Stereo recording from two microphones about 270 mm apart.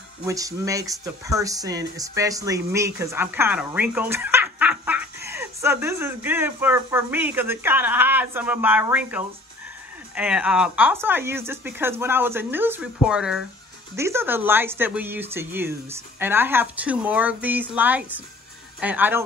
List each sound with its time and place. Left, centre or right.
0.2 s speech: centre